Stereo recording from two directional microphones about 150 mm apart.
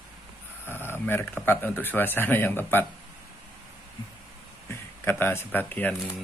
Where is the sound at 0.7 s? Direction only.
15° left (ahead or behind).